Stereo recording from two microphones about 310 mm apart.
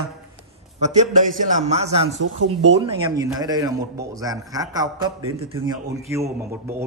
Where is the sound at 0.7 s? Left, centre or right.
Right.